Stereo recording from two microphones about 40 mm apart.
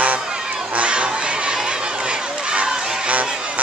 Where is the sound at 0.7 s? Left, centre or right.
Right.